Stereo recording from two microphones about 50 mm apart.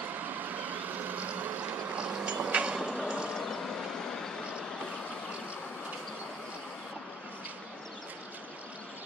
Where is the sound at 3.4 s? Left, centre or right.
Centre.